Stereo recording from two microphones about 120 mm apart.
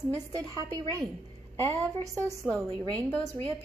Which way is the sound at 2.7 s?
10° left (ahead or behind).